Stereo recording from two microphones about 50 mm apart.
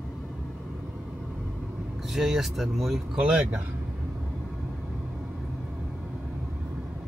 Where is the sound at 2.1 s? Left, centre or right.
Centre.